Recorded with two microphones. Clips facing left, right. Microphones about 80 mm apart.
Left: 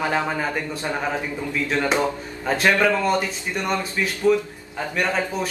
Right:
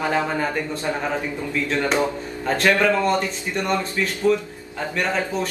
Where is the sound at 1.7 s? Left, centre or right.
Centre.